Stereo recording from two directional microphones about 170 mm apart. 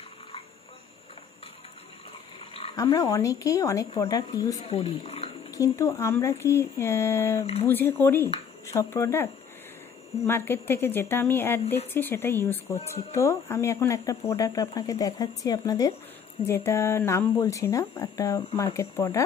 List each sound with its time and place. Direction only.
2.7 s speech: 20° left (ahead or behind)
4.6 s speech: 35° left (ahead or behind)
5.5 s speech: 20° left (ahead or behind)